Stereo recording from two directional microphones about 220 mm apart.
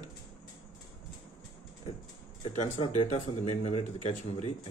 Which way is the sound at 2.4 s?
30° left (ahead or behind).